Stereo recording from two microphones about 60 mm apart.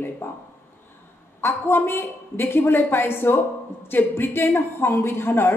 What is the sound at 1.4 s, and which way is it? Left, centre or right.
A woman's voice, left.